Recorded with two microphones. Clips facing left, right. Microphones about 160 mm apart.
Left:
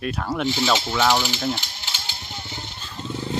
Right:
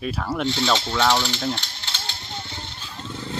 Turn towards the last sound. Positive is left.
turn(degrees=10)  # may be behind; listen again after turning